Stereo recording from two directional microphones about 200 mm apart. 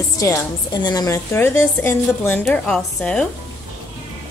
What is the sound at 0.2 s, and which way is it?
A woman's voice, 15° left (ahead or behind).